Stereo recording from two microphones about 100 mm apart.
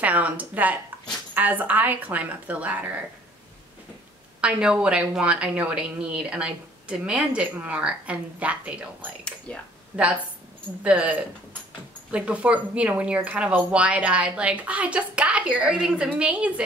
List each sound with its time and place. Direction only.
0.0 s a woman's voice: 15° right (ahead or behind)
4.4 s a woman's voice: 10° right (ahead or behind)
9.5 s speech: 10° left (ahead or behind)
10.8 s a woman's voice: 15° right (ahead or behind)